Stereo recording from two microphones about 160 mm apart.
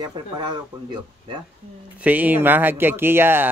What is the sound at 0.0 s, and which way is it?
Speech, 25° right (ahead or behind).